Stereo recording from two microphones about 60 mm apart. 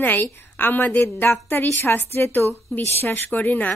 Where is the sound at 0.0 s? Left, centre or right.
Left.